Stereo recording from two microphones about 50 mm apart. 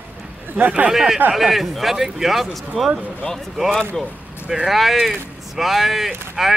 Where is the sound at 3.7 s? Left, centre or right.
Centre.